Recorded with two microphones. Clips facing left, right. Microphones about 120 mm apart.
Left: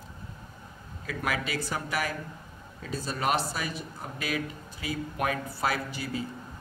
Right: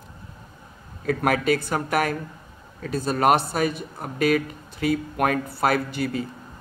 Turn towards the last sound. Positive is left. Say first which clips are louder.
# right 8 dB
turn(degrees=-60)  # may be behind; listen again after turning